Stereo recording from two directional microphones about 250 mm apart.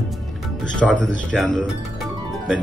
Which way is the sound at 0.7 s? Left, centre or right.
Centre.